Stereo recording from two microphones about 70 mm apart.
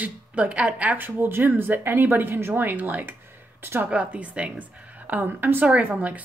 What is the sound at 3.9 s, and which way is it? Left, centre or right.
A woman's voice, centre.